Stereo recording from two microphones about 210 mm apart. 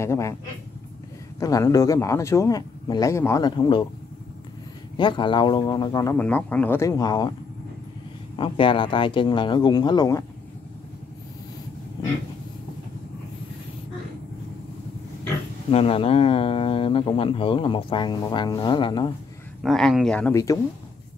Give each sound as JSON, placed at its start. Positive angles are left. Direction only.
{"t": 0.0, "sound": "speech", "side_deg": 15}
{"t": 1.4, "sound": "speech", "side_deg": 15}
{"t": 4.9, "sound": "speech", "side_deg": 20}
{"t": 6.1, "sound": "speech", "side_deg": 5}
{"t": 8.4, "sound": "speech", "side_deg": 25}
{"t": 15.7, "sound": "speech", "side_deg": 25}
{"t": 19.6, "sound": "speech", "side_deg": 0}